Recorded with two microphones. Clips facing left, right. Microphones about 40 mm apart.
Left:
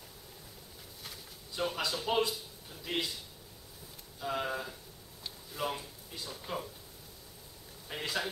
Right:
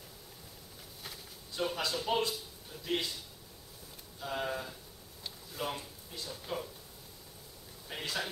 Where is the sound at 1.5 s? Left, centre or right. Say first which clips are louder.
Even; centre.